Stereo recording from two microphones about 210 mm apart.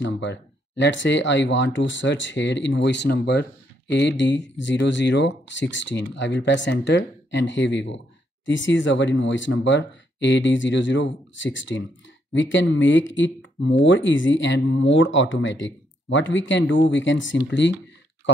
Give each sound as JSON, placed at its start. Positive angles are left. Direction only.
{"t": 0.0, "sound": "speech", "side_deg": 60}